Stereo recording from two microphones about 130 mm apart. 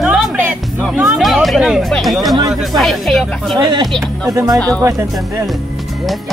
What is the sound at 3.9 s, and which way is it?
Speech, 5° left (ahead or behind).